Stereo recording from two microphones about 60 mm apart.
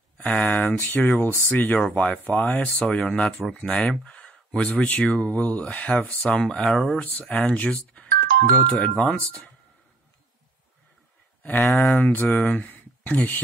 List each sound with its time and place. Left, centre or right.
0.2 s speech: left
1.8 s speech: centre
7.0 s speech: left
9.2 s speech: left
11.6 s speech: centre
11.9 s speech: left
12.6 s a sound: left